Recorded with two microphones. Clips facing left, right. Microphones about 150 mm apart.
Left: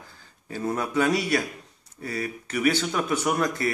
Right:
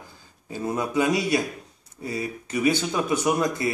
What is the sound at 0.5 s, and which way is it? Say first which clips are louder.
Speech: right 1 dB; 15° right (ahead or behind).